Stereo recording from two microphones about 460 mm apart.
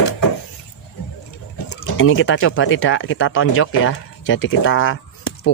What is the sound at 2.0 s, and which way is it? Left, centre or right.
Speech, left.